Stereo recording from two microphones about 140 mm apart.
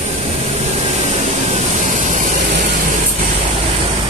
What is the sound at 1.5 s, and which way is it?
Vehicle, 60° right (ahead or behind).